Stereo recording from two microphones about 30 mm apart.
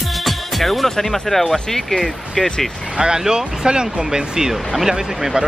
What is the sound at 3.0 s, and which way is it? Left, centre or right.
Speech, right.